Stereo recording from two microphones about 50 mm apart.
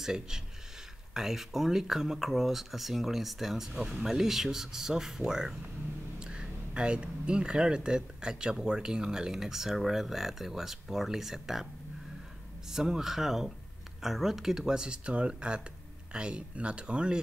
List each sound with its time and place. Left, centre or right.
0.0 s speech: centre
12.6 s speech: centre